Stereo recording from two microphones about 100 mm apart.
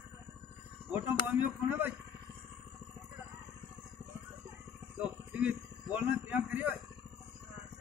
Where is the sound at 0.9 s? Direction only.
15° right (ahead or behind).